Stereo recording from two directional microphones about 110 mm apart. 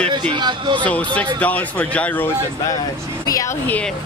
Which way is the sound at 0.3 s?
45° right (ahead or behind).